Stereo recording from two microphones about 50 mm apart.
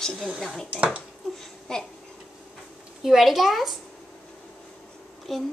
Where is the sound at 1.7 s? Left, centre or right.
Centre.